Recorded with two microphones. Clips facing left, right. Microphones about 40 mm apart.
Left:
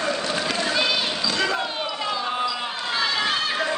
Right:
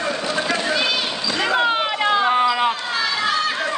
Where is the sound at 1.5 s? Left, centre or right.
Right.